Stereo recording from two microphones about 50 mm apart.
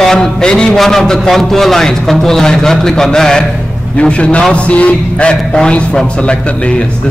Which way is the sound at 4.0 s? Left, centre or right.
Left.